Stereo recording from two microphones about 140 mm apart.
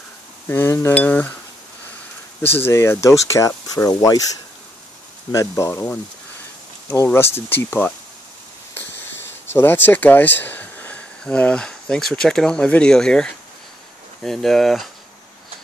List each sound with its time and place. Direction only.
0.5 s cutlery: 15° left (ahead or behind)
2.4 s speech: 15° left (ahead or behind)
5.3 s speech: 20° left (ahead or behind)
6.9 s cutlery: 15° left (ahead or behind)
9.5 s speech: 15° left (ahead or behind)